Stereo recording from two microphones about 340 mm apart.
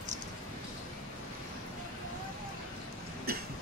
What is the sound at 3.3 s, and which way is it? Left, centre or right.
Cough, right.